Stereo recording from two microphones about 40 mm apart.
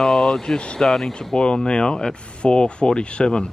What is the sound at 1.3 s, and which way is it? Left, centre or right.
Speech, left.